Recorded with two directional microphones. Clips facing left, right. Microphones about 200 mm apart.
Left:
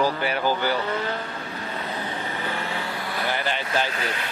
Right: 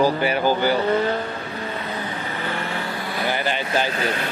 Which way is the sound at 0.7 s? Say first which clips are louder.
Right 7 dB; 30° right (ahead or behind).